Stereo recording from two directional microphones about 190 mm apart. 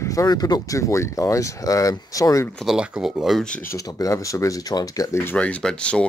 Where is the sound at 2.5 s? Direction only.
Centre (ahead or behind).